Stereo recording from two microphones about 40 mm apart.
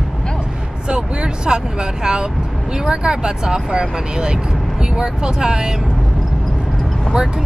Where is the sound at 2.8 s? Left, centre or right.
Centre.